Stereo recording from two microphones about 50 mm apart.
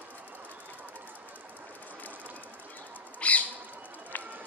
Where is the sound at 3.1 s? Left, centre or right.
Left.